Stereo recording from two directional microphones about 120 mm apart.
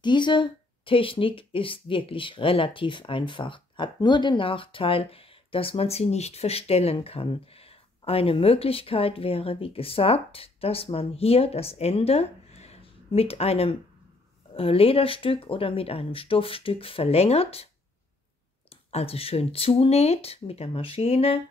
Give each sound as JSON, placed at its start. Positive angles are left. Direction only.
{"t": 0.0, "sound": "speech", "side_deg": 40}
{"t": 18.9, "sound": "speech", "side_deg": 55}